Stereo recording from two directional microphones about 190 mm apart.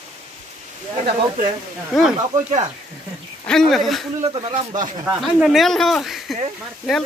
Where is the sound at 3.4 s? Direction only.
Centre (ahead or behind).